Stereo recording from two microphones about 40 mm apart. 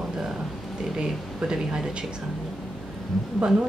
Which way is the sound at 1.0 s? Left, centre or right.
Centre.